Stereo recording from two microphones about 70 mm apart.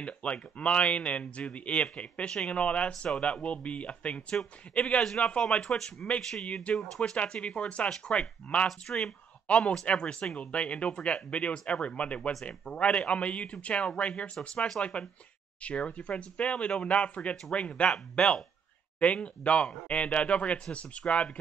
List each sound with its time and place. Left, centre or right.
0.0 s speech: centre